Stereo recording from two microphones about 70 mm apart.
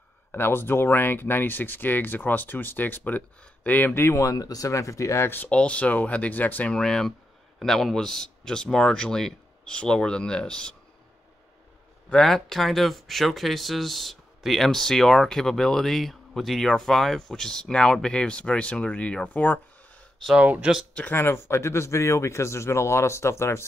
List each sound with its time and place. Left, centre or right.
0.3 s speech: left
3.9 s speech: left
5.5 s speech: centre
6.7 s speech: centre
12.1 s speech: centre; by 19.6 s left
20.3 s speech: centre
20.9 s speech: left